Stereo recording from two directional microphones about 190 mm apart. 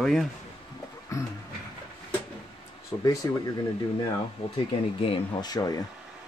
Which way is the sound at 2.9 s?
15° left (ahead or behind).